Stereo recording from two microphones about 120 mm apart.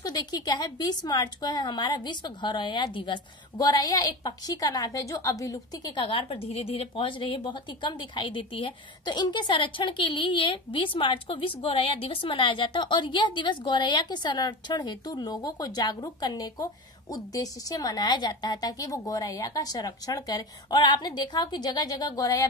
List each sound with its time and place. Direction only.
0.0 s speech: 35° left (ahead or behind)
6.2 s a woman's voice: 55° left (ahead or behind); by 22.5 s 30° left (ahead or behind)